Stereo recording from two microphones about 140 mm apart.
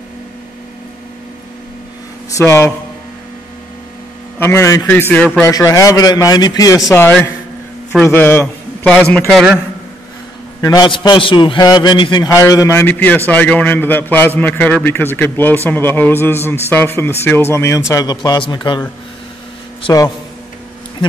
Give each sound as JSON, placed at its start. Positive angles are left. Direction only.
{"t": 2.3, "sound": "a man's voice", "side_deg": 20}
{"t": 4.4, "sound": "a man's voice", "side_deg": 20}
{"t": 5.4, "sound": "a man's voice", "side_deg": 25}
{"t": 6.9, "sound": "a man's voice", "side_deg": 15}
{"t": 9.3, "sound": "a man's voice", "side_deg": -5}
{"t": 10.6, "sound": "a man's voice", "side_deg": 25}
{"t": 10.9, "sound": "a man's voice", "side_deg": 35}